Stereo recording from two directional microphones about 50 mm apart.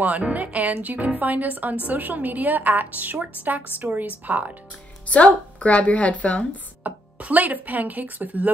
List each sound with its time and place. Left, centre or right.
0.0 s a woman's voice: right
5.1 s a woman's voice: left
6.8 s speech: right